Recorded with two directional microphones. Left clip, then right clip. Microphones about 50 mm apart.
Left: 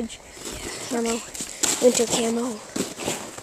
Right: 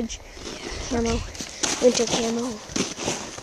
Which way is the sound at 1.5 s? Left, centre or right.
Right.